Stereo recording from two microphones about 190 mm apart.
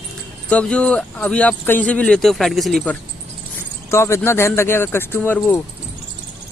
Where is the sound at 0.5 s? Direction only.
5° left (ahead or behind).